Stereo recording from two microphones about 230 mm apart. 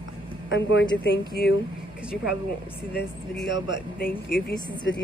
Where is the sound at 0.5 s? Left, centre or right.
Left.